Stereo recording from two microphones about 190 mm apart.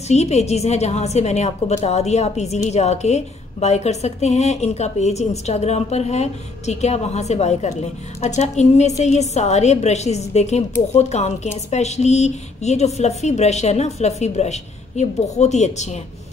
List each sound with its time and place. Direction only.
0.1 s a woman's voice: 35° left (ahead or behind)